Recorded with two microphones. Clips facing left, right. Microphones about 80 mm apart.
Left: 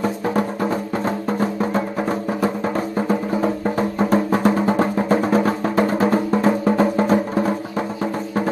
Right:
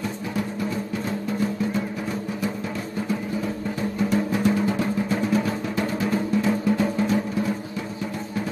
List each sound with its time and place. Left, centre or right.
0.0 s music: left